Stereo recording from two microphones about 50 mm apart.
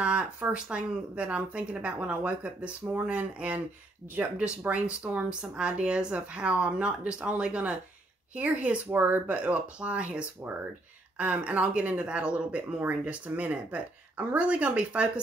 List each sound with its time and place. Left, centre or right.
0.0 s speech: right
8.9 s speech: right
9.3 s speech: right